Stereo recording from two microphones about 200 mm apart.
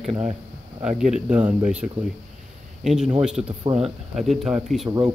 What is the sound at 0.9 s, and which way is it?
A man's voice, 5° right (ahead or behind).